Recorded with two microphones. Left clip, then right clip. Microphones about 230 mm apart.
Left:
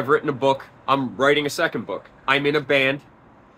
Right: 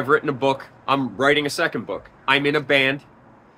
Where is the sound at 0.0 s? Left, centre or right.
Centre.